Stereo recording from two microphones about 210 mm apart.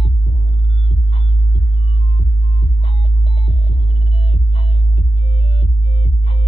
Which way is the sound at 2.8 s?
25° left (ahead or behind).